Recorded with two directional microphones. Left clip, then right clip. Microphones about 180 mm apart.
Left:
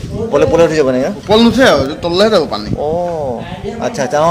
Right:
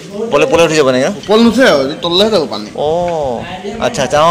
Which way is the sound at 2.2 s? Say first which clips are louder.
Left 2 dB; 5° right (ahead or behind).